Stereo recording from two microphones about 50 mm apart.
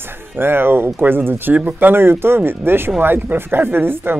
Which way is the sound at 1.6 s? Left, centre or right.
Right.